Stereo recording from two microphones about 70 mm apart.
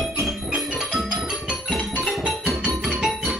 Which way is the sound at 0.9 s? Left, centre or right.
Centre.